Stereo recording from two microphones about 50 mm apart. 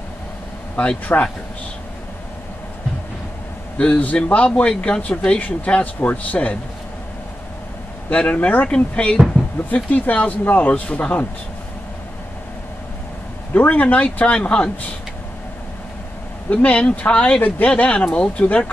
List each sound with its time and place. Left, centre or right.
0.7 s speech: left
3.7 s speech: left
8.1 s speech: left
8.6 s speech: centre
9.8 s speech: left
13.7 s speech: left
16.4 s speech: left